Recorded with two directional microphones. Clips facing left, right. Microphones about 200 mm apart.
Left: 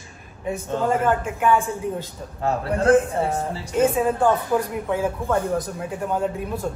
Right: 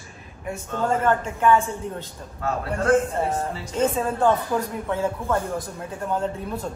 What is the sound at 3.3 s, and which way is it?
A man's voice, 10° left (ahead or behind).